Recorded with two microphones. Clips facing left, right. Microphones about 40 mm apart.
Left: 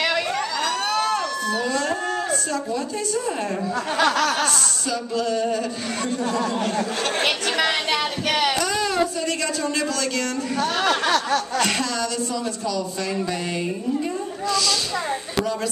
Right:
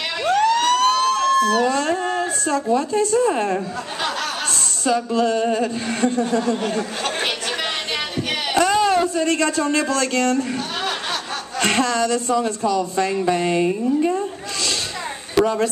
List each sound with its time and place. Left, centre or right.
0.3 s a sound: right
2.9 s speech: right
4.8 s speech: right
8.5 s speech: right
11.6 s speech: right
15.3 s a woman's voice: right